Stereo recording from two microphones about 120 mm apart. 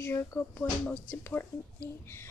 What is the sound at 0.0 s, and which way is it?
A woman's voice, 20° left (ahead or behind).